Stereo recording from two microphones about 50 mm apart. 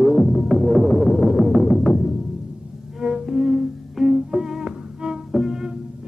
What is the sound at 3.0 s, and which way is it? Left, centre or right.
Music, centre.